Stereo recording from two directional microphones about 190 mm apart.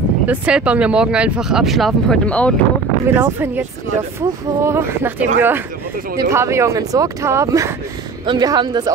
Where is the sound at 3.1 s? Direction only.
10° right (ahead or behind).